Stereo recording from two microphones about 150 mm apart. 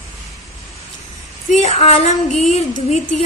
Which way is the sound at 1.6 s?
45° left (ahead or behind).